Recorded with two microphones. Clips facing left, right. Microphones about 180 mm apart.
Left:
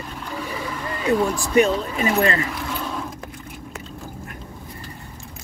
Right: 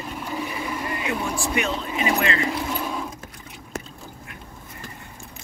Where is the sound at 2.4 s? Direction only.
20° right (ahead or behind).